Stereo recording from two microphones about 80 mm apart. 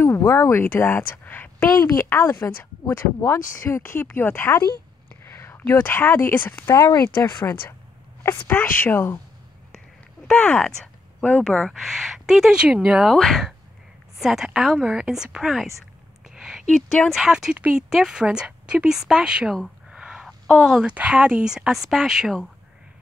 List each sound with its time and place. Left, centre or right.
0.2 s a woman's voice: left
6.7 s speech: left
8.2 s speech: left
10.2 s speech: centre
10.8 s a sound: centre
11.6 s speech: centre
13.0 s speech: centre
16.3 s a sound: centre
17.1 s speech: centre
19.9 s a sound: centre
20.2 s a sound: centre
20.8 s speech: centre